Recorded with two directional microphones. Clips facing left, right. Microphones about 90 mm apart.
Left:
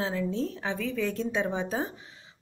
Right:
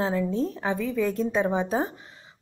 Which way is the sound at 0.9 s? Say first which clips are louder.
Right 3 dB; 5° right (ahead or behind).